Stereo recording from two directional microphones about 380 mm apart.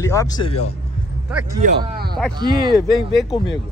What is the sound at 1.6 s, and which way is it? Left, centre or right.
Speech, right.